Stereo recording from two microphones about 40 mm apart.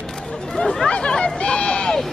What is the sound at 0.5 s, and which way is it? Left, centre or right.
Chatter, centre.